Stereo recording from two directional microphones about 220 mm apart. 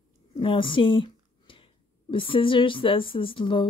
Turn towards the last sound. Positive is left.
turn(degrees=20)  # may be behind; listen again after turning